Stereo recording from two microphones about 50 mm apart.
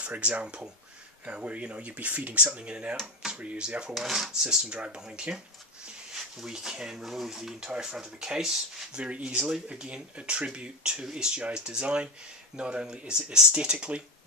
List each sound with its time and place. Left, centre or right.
0.0 s speech: right
3.9 s speech: centre
8.9 s speech: right